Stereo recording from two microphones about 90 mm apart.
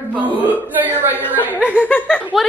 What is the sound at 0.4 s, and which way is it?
Speech, 20° right (ahead or behind).